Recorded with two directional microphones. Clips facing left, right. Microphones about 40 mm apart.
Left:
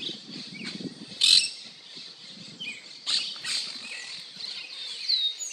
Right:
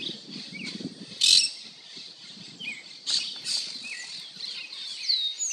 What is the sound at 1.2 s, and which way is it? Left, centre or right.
Bird, centre.